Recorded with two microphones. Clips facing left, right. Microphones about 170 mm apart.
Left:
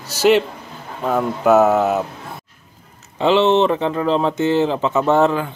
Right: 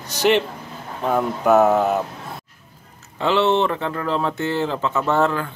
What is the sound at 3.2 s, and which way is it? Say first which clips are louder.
Speech: left 4 dB; 20° left (ahead or behind).